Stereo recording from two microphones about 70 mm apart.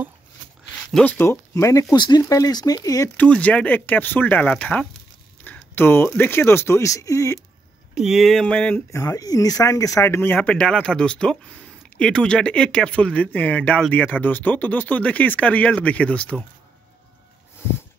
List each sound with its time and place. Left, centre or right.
1.0 s speech: left
1.5 s speech: left
2.0 s speech: left
2.2 s speech: left
3.2 s speech: centre
5.4 s a sound: left
6.1 s speech: left
7.9 s speech: centre
8.5 s speech: centre
8.9 s speech: left
10.0 s speech: left